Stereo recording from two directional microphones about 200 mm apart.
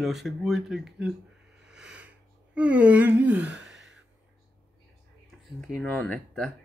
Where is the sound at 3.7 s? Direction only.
65° right (ahead or behind).